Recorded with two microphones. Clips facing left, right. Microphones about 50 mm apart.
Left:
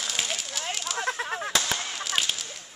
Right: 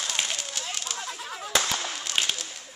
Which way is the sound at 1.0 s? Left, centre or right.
Left.